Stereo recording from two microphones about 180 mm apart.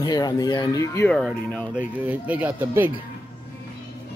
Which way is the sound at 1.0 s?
5° left (ahead or behind).